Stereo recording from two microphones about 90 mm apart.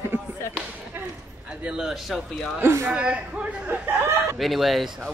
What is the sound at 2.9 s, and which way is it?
Speech, 10° right (ahead or behind).